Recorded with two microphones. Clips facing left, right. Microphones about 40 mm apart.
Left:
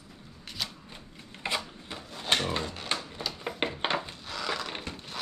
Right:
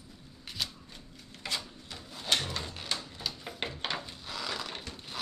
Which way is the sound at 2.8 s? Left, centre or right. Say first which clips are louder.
Left 3 dB; left.